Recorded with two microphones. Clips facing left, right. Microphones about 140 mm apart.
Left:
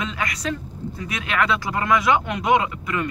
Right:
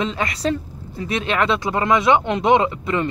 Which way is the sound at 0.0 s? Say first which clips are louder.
Right 5 dB; 30° right (ahead or behind).